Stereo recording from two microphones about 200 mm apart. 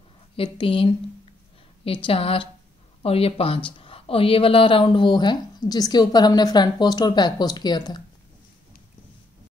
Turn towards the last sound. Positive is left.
turn(degrees=20)  # may be behind; listen again after turning